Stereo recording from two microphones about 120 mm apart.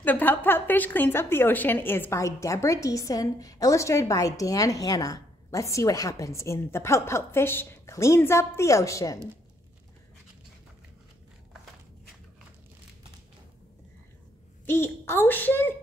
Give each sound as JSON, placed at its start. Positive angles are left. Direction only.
{"t": 0.0, "sound": "a woman's voice", "side_deg": 15}
{"t": 14.7, "sound": "a woman's voice", "side_deg": 20}